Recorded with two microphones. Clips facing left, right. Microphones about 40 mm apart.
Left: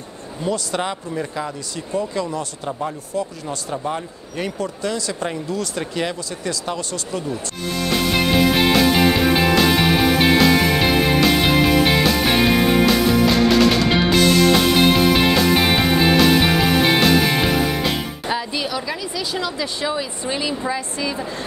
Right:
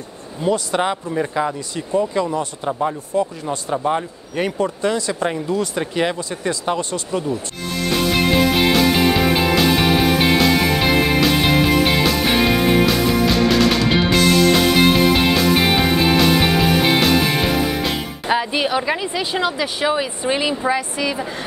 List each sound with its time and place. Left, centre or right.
0.4 s speech: centre
8.5 s music: centre
18.3 s speech: right